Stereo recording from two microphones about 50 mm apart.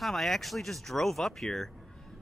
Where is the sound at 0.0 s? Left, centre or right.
Centre.